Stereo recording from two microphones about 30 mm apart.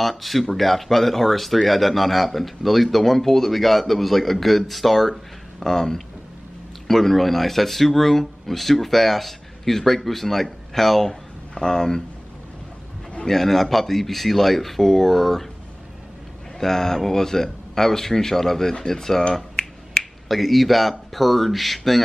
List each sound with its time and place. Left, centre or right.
0.0 s speech: centre
5.6 s speech: centre
13.3 s speech: centre
16.5 s speech: centre
19.6 s finger snapping: left
20.0 s speech: centre